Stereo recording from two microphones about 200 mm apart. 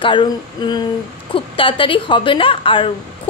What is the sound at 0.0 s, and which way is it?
Speech, 25° left (ahead or behind).